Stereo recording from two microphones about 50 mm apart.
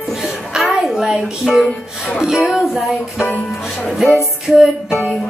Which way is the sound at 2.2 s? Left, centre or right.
Centre.